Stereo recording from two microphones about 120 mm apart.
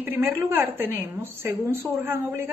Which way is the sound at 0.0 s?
20° right (ahead or behind).